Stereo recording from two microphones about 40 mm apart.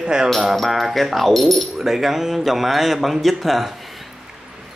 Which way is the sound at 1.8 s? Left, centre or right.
Centre.